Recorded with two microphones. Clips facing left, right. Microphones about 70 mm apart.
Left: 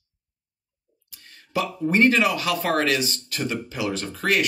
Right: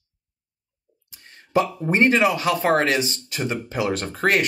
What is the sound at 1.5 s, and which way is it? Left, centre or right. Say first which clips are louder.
Speech: right 2 dB; right.